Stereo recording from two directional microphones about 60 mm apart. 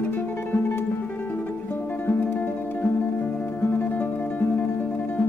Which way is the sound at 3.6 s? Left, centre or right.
Left.